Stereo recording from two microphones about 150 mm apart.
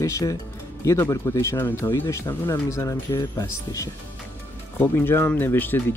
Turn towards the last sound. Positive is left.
turn(degrees=15)  # may be behind; listen again after turning